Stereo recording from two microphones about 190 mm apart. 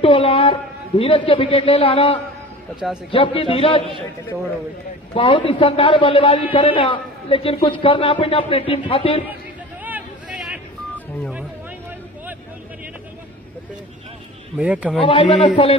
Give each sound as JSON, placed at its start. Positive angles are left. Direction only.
{"t": 0.0, "sound": "a man's voice", "side_deg": 30}
{"t": 5.1, "sound": "a man's voice", "side_deg": 25}
{"t": 9.8, "sound": "vehicle", "side_deg": -5}
{"t": 14.6, "sound": "a man's voice", "side_deg": -5}
{"t": 15.0, "sound": "a man's voice", "side_deg": 25}